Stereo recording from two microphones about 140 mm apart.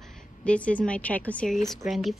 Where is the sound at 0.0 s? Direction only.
10° left (ahead or behind).